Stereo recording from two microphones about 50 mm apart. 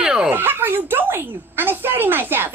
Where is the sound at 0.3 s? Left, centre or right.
Right.